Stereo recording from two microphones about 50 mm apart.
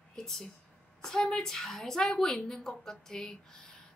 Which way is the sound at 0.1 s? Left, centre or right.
Centre.